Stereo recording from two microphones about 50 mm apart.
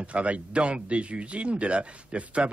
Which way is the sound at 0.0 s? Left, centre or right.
Right.